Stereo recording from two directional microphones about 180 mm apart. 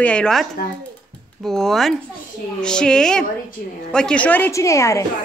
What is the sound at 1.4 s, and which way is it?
A woman's voice, centre (ahead or behind).